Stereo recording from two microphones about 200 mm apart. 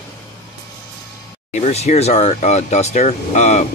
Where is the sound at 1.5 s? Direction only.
35° left (ahead or behind).